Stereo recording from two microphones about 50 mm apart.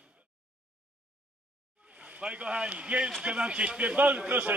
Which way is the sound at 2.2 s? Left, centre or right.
Right.